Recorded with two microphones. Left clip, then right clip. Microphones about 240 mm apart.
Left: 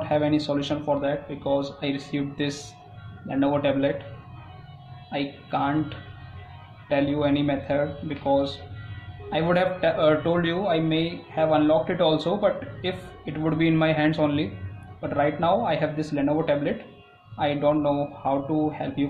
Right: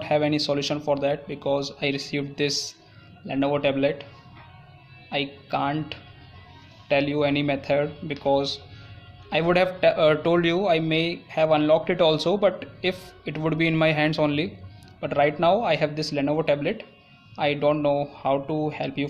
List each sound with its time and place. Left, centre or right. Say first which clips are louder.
0.0 s speech: right 1 dB; right
5.1 s speech: right 1 dB; right